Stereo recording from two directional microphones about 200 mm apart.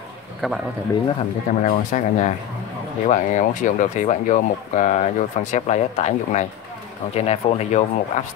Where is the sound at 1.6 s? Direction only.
40° left (ahead or behind).